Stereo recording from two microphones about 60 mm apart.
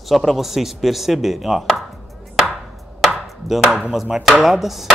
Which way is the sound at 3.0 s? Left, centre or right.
Centre.